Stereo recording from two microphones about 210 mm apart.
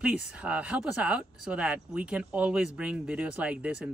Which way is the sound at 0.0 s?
5° right (ahead or behind).